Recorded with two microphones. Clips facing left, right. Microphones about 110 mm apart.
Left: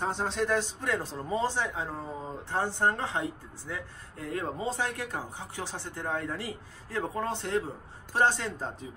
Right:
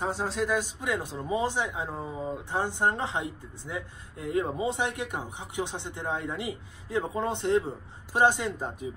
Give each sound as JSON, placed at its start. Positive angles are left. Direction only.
{"t": 0.0, "sound": "speech", "side_deg": -5}